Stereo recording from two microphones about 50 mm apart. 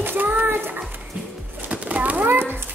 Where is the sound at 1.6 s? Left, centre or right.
Right.